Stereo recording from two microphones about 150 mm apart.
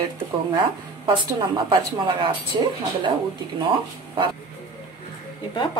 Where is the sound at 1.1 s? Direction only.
30° right (ahead or behind).